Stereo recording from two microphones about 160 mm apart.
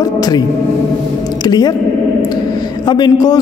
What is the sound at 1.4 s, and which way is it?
Speech, 25° left (ahead or behind).